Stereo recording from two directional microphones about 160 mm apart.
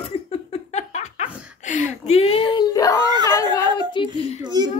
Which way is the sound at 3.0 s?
25° right (ahead or behind).